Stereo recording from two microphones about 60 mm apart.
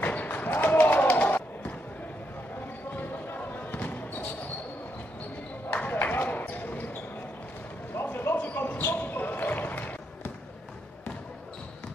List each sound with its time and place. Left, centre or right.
0.0 s a sound: left
2.9 s basketball bounce: left
5.7 s basketball bounce: left
7.9 s basketball bounce: left